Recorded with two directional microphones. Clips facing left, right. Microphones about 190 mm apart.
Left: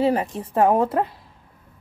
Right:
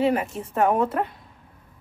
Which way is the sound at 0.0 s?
35° left (ahead or behind).